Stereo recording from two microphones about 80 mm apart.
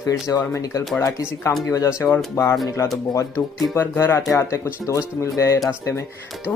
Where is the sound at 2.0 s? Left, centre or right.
Left.